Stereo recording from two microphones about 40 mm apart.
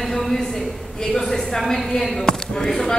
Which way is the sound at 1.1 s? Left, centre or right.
Centre.